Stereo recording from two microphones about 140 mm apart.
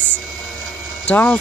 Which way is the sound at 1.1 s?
10° left (ahead or behind).